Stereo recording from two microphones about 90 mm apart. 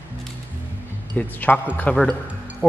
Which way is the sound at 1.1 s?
15° left (ahead or behind).